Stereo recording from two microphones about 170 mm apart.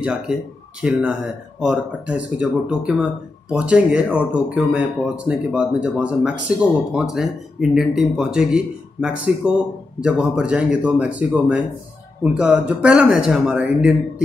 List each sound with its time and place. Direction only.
0.7 s speech: 5° right (ahead or behind)